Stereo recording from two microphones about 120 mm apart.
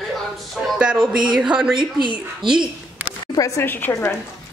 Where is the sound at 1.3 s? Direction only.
5° right (ahead or behind).